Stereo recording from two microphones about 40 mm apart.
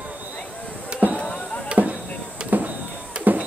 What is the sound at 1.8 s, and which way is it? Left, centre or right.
Chop, right.